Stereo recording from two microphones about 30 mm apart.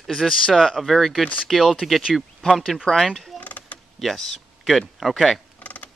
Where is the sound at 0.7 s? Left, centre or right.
Centre.